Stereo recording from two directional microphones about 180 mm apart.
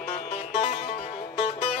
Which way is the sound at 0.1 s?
35° left (ahead or behind).